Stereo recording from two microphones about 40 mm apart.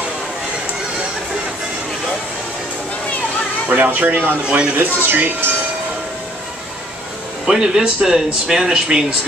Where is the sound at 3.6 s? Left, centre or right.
Right.